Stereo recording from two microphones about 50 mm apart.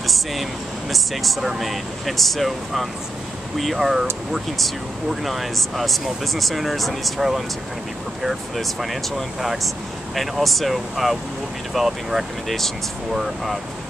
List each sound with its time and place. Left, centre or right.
0.0 s speech: centre